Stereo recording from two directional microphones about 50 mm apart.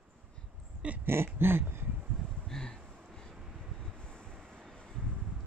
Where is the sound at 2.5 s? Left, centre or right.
Centre.